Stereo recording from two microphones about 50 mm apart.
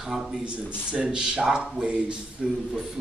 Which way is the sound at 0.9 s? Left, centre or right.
Centre.